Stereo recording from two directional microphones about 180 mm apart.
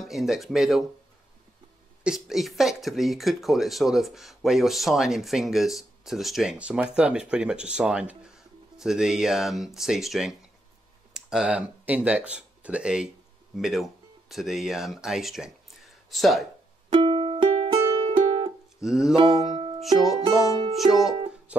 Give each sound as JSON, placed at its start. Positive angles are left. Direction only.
{"t": 0.0, "sound": "speech", "side_deg": 0}
{"t": 2.0, "sound": "speech", "side_deg": 0}
{"t": 16.9, "sound": "music", "side_deg": -30}
{"t": 18.8, "sound": "speech", "side_deg": -5}
{"t": 19.1, "sound": "music", "side_deg": -25}
{"t": 19.8, "sound": "music", "side_deg": 0}
{"t": 20.2, "sound": "music", "side_deg": -20}
{"t": 20.7, "sound": "music", "side_deg": 0}